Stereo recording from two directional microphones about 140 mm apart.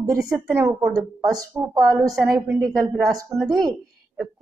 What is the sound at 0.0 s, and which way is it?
A woman's voice, 25° right (ahead or behind).